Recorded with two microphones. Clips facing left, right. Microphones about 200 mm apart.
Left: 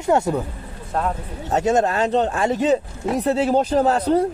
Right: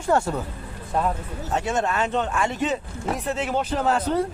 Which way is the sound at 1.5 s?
40° left (ahead or behind).